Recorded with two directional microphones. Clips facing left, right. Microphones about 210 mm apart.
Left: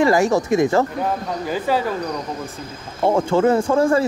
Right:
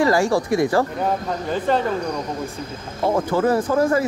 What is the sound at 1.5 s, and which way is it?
Speech, 5° left (ahead or behind).